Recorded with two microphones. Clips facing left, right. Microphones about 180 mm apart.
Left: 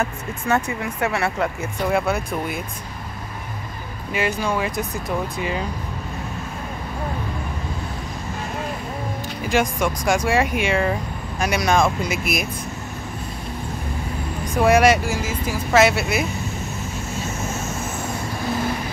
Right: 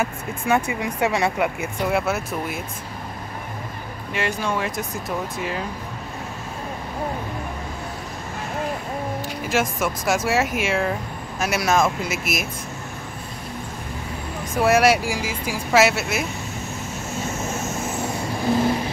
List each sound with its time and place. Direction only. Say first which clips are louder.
0.7 s speech: right 1 dB; 15° right (ahead or behind)
1.9 s speech: left 2 dB; centre (ahead or behind)
4.1 s speech: left 2 dB; centre (ahead or behind)
9.4 s speech: left 3 dB; centre (ahead or behind)
14.4 s speech: left 2 dB; centre (ahead or behind)